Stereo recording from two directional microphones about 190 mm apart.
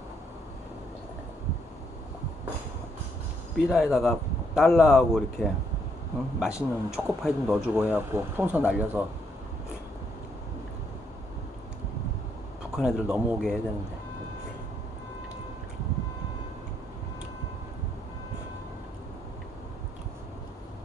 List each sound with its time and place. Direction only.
3.5 s speech: centre (ahead or behind)
12.7 s speech: 5° right (ahead or behind)